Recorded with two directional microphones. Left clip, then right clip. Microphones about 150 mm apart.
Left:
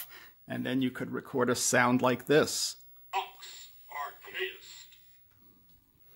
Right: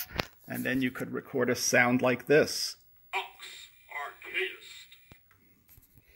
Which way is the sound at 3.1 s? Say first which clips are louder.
Even; 30° right (ahead or behind).